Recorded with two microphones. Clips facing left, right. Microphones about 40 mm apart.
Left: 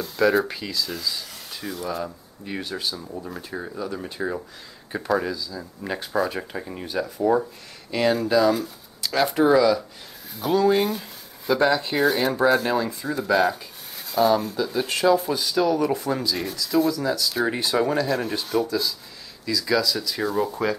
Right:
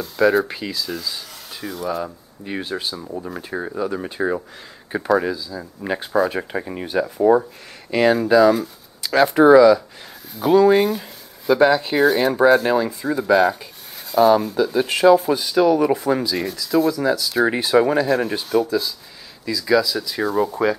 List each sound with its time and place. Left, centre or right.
0.0 s speech: centre
0.5 s speech: centre
2.4 s speech: centre
16.3 s speech: centre
16.9 s speech: centre